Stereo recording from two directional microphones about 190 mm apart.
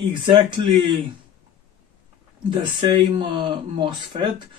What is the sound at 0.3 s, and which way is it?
Speech, 25° right (ahead or behind).